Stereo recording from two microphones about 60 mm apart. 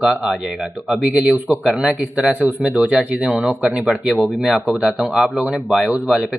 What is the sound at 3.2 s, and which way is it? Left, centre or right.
Speech, centre.